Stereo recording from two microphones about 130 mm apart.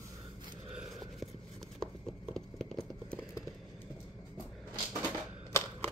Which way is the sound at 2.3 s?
5° left (ahead or behind).